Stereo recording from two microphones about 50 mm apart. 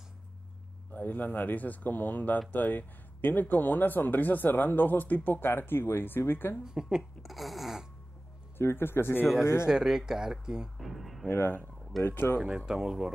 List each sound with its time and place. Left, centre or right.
0.9 s speech: left
6.6 s speech: centre
7.0 s speech: centre
8.5 s speech: left
9.4 s speech: left
9.7 s speech: centre
10.8 s music: centre
11.2 s speech: left
12.4 s speech: centre